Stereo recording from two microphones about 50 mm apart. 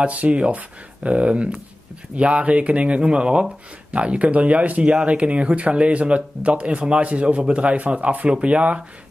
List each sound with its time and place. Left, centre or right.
0.0 s speech: right